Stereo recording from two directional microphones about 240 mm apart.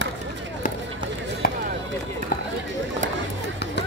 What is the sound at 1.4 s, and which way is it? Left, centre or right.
Chop, left.